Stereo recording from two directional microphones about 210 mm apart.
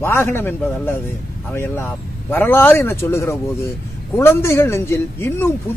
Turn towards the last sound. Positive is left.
turn(degrees=10)  # may be behind; listen again after turning